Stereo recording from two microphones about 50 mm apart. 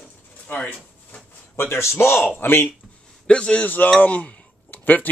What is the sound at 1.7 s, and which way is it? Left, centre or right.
Speech, left.